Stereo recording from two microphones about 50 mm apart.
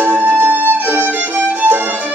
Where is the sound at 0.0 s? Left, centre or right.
Right.